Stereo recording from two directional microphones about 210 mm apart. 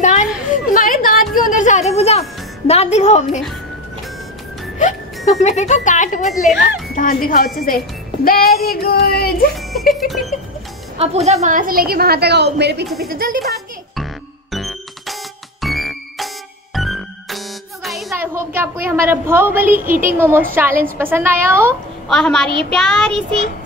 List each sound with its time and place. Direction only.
0.0 s a sound: 35° left (ahead or behind)
0.7 s music: 40° left (ahead or behind)
4.7 s a woman's voice: 35° left (ahead or behind)
9.6 s child singing: centre (ahead or behind)
11.0 s a woman's voice: 30° right (ahead or behind); by 12.8 s 55° right (ahead or behind)
14.5 s music: centre (ahead or behind)
18.1 s a woman's voice: 10° right (ahead or behind)
19.7 s speech: 40° right (ahead or behind)
20.2 s a woman's voice: 10° right (ahead or behind)
22.0 s child singing: 5° left (ahead or behind)